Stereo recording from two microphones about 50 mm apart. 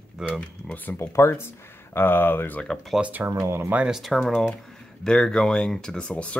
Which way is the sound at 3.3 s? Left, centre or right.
Right.